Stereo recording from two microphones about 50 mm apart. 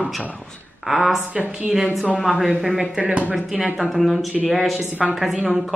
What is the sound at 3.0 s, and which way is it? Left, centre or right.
Speech, right.